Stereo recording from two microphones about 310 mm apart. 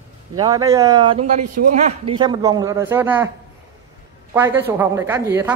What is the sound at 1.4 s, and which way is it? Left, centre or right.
Speech, right.